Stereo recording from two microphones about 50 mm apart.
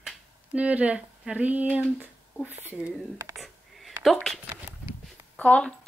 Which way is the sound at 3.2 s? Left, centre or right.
Right.